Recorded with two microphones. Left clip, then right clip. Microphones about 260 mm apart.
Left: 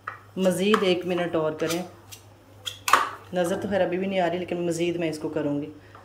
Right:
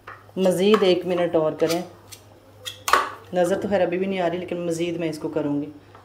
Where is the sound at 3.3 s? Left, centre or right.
Centre.